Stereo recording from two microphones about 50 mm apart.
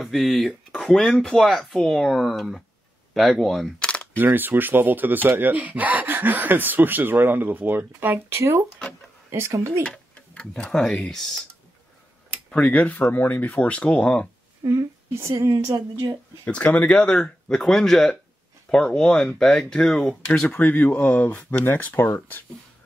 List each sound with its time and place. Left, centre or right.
0.0 s speech: centre
3.8 s a sound: left
4.2 s speech: right
9.8 s tick-tock: left
10.7 s speech: centre
12.4 s speech: left
14.6 s a woman's voice: right
16.4 s speech: left
16.9 s speech: centre
18.8 s speech: centre
20.4 s speech: left
21.5 s speech: left